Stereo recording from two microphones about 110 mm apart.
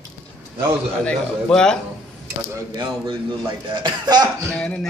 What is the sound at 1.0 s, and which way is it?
Speech, 5° left (ahead or behind).